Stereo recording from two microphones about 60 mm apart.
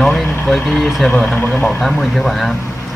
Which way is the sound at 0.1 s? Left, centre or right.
Centre.